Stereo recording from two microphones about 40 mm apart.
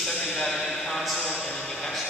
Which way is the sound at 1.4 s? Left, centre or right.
Centre.